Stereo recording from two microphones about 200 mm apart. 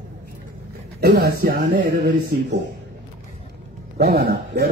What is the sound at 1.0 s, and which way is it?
Speech, 50° right (ahead or behind).